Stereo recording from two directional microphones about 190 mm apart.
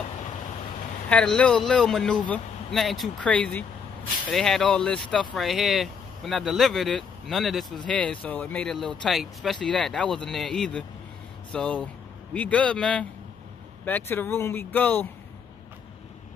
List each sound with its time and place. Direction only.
1.0 s speech: 5° left (ahead or behind)